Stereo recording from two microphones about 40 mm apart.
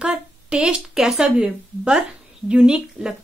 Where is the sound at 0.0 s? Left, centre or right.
Right.